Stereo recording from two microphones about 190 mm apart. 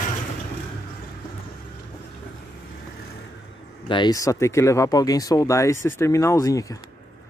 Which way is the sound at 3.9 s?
20° left (ahead or behind).